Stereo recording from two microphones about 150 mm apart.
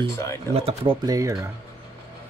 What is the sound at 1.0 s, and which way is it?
Speech, 25° right (ahead or behind).